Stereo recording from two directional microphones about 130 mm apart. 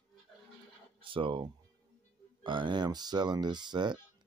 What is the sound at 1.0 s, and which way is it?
Speech, 40° right (ahead or behind).